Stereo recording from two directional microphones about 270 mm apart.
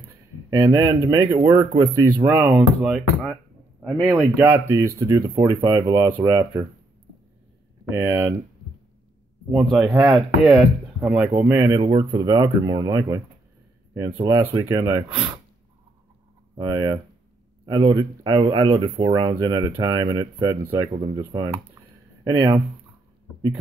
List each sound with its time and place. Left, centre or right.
0.5 s speech: centre
4.4 s speech: centre
7.9 s speech: centre
9.5 s speech: centre
16.5 s speech: centre